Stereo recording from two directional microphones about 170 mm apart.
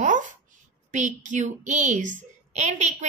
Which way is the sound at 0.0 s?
50° right (ahead or behind).